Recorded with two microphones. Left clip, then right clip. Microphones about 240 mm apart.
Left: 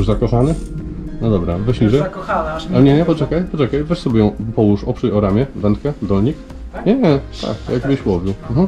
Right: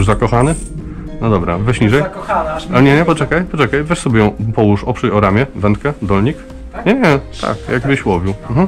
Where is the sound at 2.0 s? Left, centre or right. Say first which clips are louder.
Right 3 dB; centre.